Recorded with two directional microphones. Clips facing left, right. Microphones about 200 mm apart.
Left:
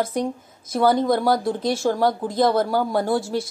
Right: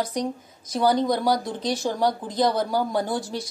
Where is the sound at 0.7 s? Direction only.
50° left (ahead or behind).